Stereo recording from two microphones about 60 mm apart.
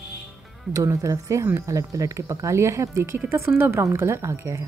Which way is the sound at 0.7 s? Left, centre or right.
Right.